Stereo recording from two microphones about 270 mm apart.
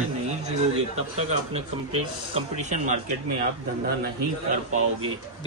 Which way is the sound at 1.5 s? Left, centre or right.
Right.